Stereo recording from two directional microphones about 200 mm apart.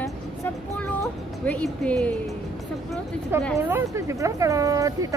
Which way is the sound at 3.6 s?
10° right (ahead or behind).